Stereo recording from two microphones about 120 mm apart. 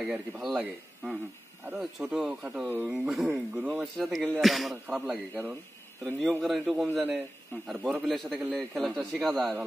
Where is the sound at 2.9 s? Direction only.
5° right (ahead or behind).